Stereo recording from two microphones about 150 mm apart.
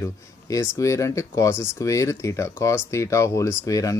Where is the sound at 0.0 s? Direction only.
20° left (ahead or behind).